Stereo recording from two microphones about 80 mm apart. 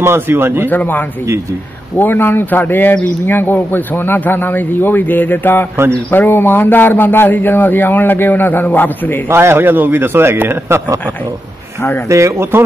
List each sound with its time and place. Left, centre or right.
0.0 s a man's voice: right
0.7 s speech: left
9.3 s a man's voice: right
12.1 s speech: right